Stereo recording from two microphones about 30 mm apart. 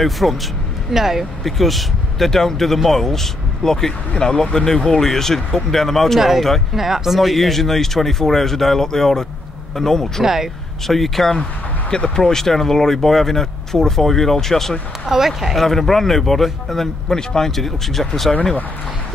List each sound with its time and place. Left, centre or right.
0.0 s speech: centre
0.9 s speech: centre
1.4 s speech: centre
6.1 s speech: centre
7.2 s speech: centre
10.2 s speech: centre
10.9 s speech: centre
15.0 s speech: centre
15.6 s speech: centre
17.6 s speech: centre